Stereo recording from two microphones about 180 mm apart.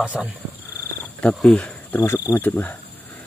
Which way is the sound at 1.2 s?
5° left (ahead or behind).